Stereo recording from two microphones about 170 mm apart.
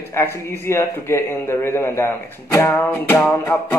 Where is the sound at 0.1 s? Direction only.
15° left (ahead or behind).